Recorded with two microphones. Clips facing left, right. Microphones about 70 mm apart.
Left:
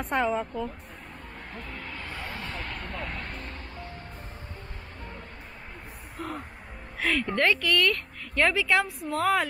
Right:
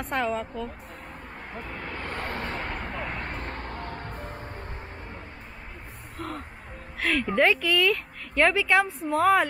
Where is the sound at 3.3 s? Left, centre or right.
Right.